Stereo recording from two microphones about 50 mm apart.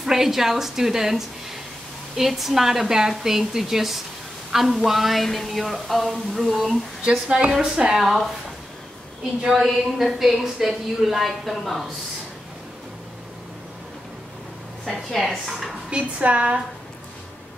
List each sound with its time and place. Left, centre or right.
0.0 s a woman's voice: centre
7.1 s a woman's voice: centre
8.0 s speech: centre
9.5 s speech: centre
14.9 s speech: centre
15.9 s a woman's voice: right